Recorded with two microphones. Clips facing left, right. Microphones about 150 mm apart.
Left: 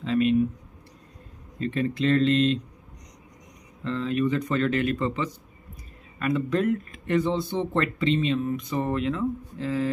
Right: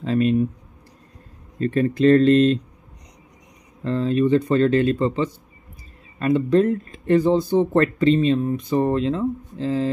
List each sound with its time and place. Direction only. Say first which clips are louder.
0.0 s speech: right 2 dB; 40° right (ahead or behind)
1.6 s speech: right 7 dB; 45° right (ahead or behind)
3.8 s speech: right 6 dB; 35° right (ahead or behind)